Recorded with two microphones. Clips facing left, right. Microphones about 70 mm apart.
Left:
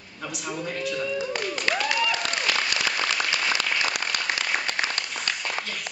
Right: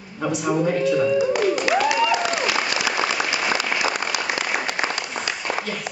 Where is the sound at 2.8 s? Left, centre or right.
Centre.